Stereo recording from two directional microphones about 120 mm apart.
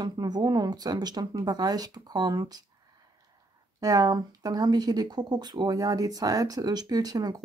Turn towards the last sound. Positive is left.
turn(degrees=-35)  # may be behind; listen again after turning